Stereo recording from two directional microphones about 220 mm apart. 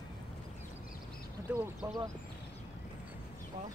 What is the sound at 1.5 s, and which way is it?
Speech, 5° right (ahead or behind).